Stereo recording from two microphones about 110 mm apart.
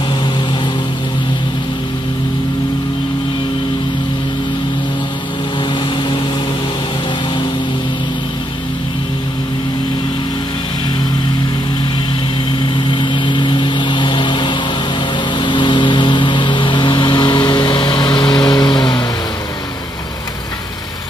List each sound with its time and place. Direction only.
12.7 s vehicle: 45° left (ahead or behind)